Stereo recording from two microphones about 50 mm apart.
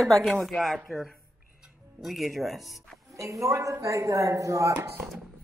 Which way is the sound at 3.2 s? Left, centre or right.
Right.